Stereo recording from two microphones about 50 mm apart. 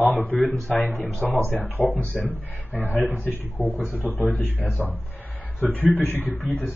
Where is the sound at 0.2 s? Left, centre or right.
Left.